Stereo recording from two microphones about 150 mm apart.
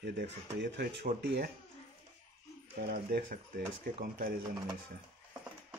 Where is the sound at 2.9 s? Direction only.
90° right; by 4.3 s 70° right (ahead or behind).